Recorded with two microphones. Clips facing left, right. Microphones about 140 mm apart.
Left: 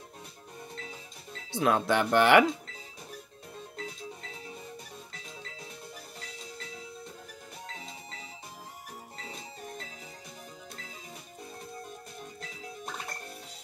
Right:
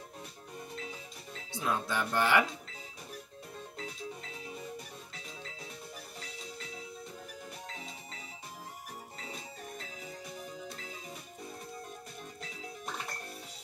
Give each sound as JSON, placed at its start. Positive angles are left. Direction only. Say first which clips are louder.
{"t": 1.5, "sound": "speech", "louder": "left 8 dB", "side_deg": 70}